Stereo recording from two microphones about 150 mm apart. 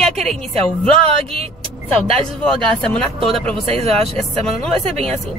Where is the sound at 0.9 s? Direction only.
40° right (ahead or behind).